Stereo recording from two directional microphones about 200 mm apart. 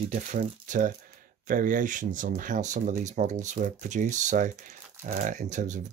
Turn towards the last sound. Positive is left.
turn(degrees=-40)  # may be behind; listen again after turning